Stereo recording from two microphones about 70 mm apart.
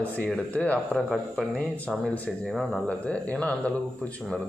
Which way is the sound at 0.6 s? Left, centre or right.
Left.